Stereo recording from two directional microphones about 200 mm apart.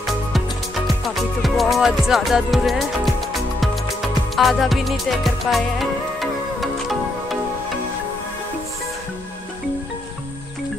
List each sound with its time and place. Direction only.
1.4 s music: centre (ahead or behind)
4.4 s music: centre (ahead or behind)